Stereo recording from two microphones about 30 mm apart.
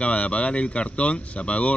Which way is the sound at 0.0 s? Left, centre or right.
Left.